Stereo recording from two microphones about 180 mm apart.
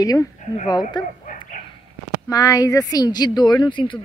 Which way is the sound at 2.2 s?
20° left (ahead or behind).